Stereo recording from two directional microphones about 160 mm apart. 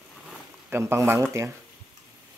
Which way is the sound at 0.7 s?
15° right (ahead or behind).